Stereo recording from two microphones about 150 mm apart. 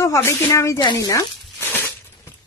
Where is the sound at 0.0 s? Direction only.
20° left (ahead or behind).